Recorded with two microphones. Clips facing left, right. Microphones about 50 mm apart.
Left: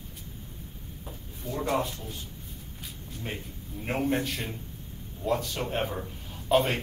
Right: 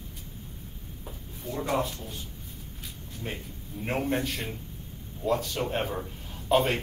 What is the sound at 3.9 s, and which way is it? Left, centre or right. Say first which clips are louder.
A man's voice: left 1 dB; centre.